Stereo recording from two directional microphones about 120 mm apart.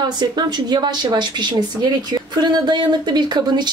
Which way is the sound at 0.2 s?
40° right (ahead or behind).